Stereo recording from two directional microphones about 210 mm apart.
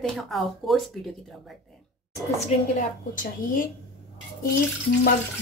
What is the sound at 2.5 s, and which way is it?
Speech, 30° left (ahead or behind).